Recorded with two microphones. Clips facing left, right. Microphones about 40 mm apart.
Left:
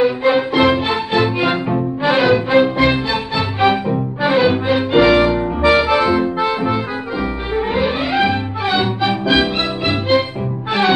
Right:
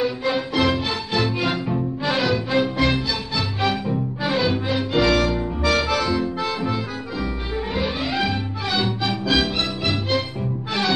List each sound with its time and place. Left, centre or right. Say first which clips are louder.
0.0 s music: left 8 dB; left